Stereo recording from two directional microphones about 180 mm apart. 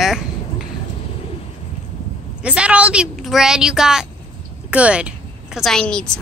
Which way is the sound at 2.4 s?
5° right (ahead or behind).